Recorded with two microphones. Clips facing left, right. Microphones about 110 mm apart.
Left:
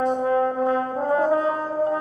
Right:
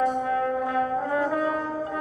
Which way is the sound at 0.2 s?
30° left (ahead or behind).